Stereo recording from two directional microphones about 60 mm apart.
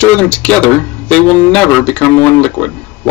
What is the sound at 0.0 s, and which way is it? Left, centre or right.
A man's voice, left.